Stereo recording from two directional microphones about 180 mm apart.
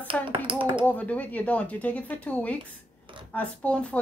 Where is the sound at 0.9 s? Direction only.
10° left (ahead or behind).